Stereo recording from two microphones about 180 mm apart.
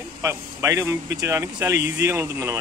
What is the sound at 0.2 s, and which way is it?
Speech, 15° right (ahead or behind).